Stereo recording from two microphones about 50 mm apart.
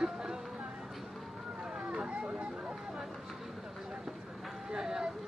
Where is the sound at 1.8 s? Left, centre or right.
Centre.